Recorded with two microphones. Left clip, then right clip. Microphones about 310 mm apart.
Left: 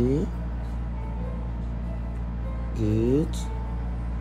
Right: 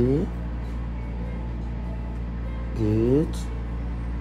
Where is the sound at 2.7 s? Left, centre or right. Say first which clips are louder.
Right 2 dB; right.